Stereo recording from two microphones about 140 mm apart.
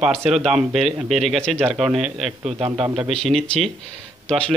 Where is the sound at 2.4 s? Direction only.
50° right (ahead or behind).